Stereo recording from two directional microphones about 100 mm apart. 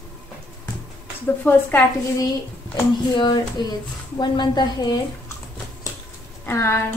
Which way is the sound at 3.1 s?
50° left (ahead or behind).